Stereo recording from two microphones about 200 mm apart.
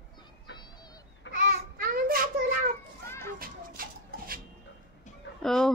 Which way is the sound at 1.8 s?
45° right (ahead or behind).